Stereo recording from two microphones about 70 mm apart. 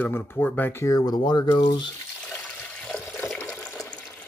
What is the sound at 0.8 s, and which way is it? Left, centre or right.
Speech, left.